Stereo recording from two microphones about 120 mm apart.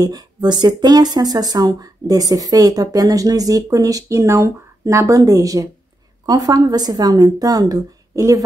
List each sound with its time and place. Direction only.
0.0 s speech: 35° right (ahead or behind)